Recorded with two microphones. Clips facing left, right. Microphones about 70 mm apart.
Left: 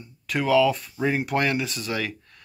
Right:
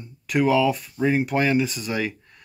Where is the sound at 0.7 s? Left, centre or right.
Centre.